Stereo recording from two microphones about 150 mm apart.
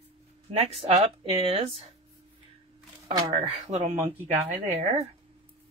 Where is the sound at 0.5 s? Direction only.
40° right (ahead or behind).